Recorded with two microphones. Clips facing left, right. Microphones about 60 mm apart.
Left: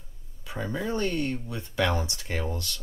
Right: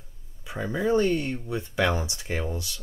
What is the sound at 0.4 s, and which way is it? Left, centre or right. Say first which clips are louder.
Speech: right 3 dB; centre.